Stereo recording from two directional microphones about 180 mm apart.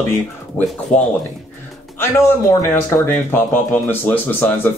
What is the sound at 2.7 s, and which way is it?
Speech, 15° left (ahead or behind).